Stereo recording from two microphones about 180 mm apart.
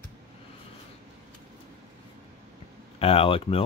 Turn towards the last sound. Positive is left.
turn(degrees=30)  # may be behind; listen again after turning